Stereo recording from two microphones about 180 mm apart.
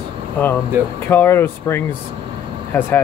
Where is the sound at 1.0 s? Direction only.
10° left (ahead or behind).